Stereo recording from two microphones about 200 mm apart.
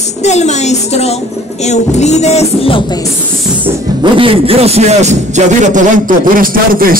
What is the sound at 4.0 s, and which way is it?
A man's voice, 25° right (ahead or behind).